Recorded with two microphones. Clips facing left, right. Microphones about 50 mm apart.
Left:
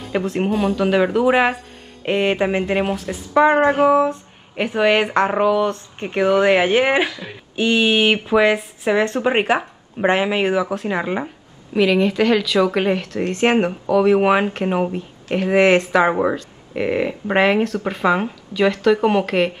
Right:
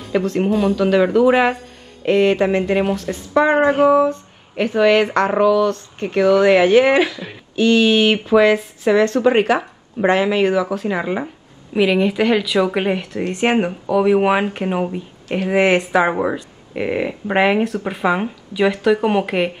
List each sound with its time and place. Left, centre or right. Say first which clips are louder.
0.2 s speech: right 1 dB; left
0.5 s speech: right 2 dB; centre
2.0 s speech: right 4 dB; centre
10.8 s speech: right 1 dB; centre
11.7 s speech: even; centre
15.5 s speech: left 1 dB; centre